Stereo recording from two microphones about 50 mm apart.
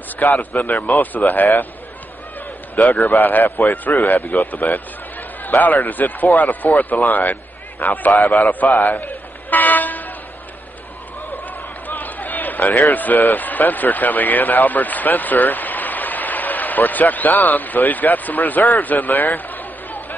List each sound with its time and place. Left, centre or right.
0.2 s a man's voice: left
2.9 s a man's voice: left
8.3 s toot: left
11.9 s a sound: left
12.9 s speech: left